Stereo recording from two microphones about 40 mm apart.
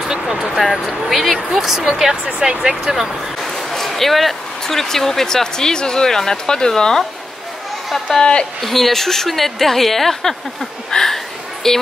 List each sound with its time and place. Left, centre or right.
0.0 s speech: centre
0.5 s a woman's voice: centre
2.4 s speech: centre
3.4 s speech: centre
8.2 s speech: left
8.5 s a woman's voice: centre